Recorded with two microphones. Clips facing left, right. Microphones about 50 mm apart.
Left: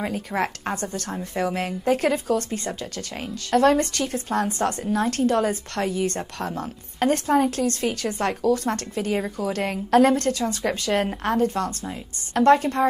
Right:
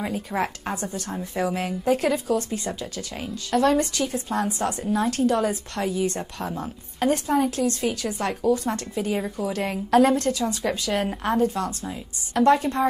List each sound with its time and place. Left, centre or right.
0.3 s speech: centre
1.3 s speech: left